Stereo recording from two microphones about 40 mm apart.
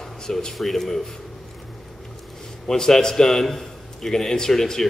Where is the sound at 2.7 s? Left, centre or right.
Centre.